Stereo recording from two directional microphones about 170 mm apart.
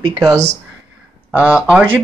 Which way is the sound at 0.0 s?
20° right (ahead or behind).